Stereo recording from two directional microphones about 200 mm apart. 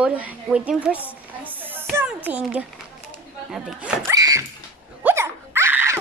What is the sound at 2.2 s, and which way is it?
A woman's voice, 5° right (ahead or behind).